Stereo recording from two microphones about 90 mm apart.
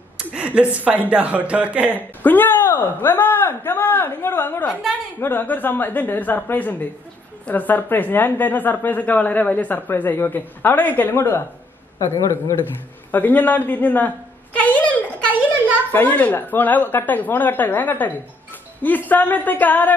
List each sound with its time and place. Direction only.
0.3 s speech: 15° right (ahead or behind)
2.2 s a woman's voice: 20° left (ahead or behind)
12.0 s a man's voice: 40° left (ahead or behind)
12.7 s a sound: 20° left (ahead or behind)
15.9 s a woman's voice: 20° left (ahead or behind)